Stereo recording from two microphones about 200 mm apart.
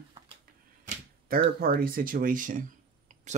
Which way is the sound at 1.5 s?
45° right (ahead or behind).